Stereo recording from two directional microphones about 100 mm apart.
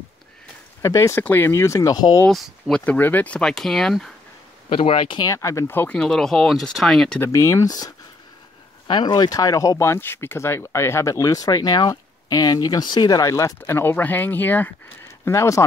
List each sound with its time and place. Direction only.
0.8 s speech: 30° left (ahead or behind)
1.2 s speech: 20° left (ahead or behind)
1.5 s speech: 30° left (ahead or behind)
2.2 s speech: centre (ahead or behind)
2.7 s speech: 15° left (ahead or behind)
4.7 s speech: 75° left (ahead or behind); by 5.3 s 55° left (ahead or behind)
5.3 s speech: 30° left (ahead or behind)
5.9 s speech: 5° left (ahead or behind)
7.2 s speech: 30° left (ahead or behind); by 13.2 s 50° left (ahead or behind)
13.2 s speech: 35° left (ahead or behind)
15.2 s speech: 30° left (ahead or behind)